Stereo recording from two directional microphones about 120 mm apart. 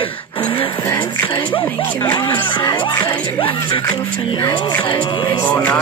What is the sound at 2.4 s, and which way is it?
Music, 40° left (ahead or behind).